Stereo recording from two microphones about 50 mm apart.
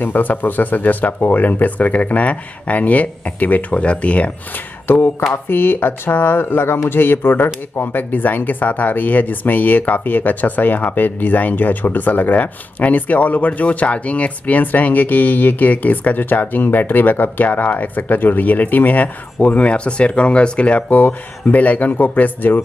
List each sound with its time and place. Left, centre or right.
0.0 s speech: left
4.8 s speech: left